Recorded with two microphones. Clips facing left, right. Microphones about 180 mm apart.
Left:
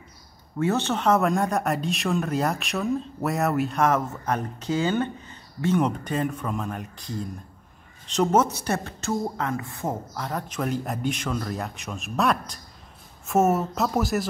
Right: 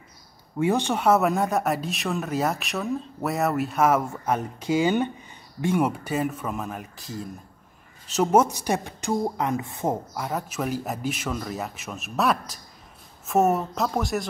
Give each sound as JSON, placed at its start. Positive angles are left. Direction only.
{"t": 0.6, "sound": "a woman's voice", "side_deg": -15}
{"t": 10.1, "sound": "speech", "side_deg": -10}